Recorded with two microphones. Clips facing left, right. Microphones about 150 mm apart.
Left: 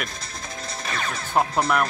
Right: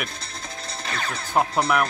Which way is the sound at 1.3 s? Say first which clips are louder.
Even; 5° right (ahead or behind).